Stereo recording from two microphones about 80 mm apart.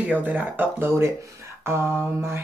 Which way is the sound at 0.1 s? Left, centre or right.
Right.